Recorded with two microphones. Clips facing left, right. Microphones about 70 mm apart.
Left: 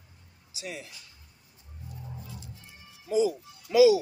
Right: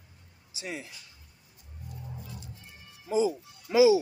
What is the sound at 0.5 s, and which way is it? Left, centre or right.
Speech, right.